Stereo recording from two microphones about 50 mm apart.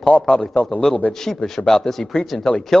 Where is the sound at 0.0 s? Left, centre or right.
Left.